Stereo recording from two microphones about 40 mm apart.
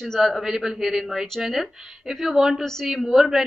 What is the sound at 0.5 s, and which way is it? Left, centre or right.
A woman's voice, centre.